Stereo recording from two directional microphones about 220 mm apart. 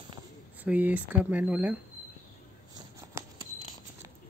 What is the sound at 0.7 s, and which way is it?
Speech, 5° right (ahead or behind).